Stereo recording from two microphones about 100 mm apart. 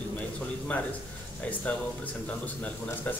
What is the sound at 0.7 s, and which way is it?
Speech, 15° left (ahead or behind).